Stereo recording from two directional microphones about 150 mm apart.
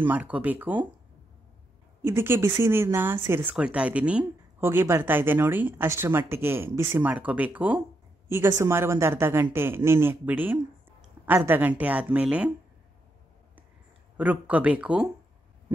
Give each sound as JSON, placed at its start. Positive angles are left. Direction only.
{"t": 0.0, "sound": "speech", "side_deg": -10}
{"t": 2.0, "sound": "speech", "side_deg": -15}
{"t": 14.1, "sound": "speech", "side_deg": -10}